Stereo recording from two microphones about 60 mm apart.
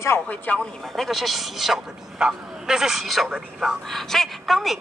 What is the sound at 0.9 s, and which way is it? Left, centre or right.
A man's voice, centre.